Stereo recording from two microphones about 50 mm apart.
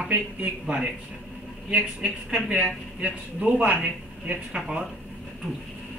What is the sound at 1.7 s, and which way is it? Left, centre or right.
A man's voice, right.